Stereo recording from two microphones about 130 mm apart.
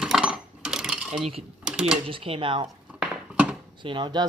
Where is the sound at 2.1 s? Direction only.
45° right (ahead or behind).